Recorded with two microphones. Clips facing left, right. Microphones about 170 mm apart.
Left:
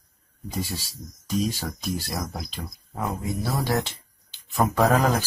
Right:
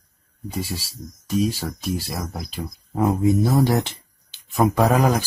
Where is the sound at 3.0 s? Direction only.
25° right (ahead or behind).